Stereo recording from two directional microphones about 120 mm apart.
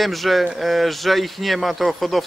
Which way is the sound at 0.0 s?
Centre (ahead or behind).